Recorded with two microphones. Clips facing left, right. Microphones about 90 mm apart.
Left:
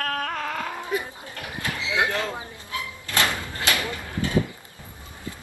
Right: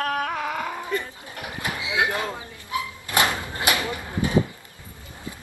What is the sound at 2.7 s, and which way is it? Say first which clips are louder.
Door: right 4 dB; 20° right (ahead or behind).